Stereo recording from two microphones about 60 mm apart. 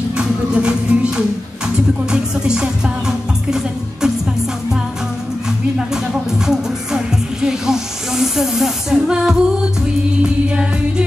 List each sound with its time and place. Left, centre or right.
0.2 s music: centre
6.3 s music: centre